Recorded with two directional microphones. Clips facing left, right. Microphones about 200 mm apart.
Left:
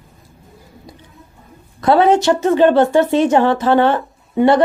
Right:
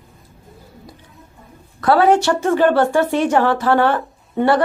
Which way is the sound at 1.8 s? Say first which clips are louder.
Left 1 dB; 20° left (ahead or behind).